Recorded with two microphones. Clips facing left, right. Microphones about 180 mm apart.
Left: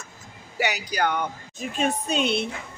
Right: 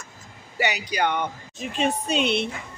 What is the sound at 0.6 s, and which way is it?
Speech, 5° left (ahead or behind).